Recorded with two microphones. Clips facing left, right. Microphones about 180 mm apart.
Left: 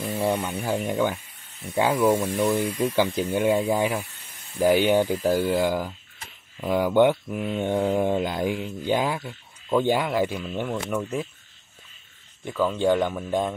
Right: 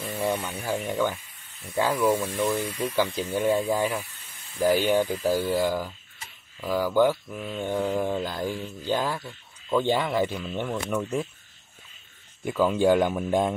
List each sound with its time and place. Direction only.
0.4 s mantra: 10° left (ahead or behind)
6.6 s speech: 20° left (ahead or behind)
7.2 s mantra: 20° left (ahead or behind)
12.4 s speech: 10° right (ahead or behind)